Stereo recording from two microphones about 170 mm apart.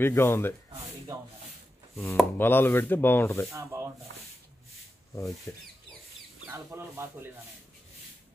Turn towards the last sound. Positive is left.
turn(degrees=-15)  # may be behind; listen again after turning